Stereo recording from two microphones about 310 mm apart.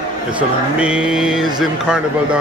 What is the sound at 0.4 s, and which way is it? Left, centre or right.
A man's voice, centre.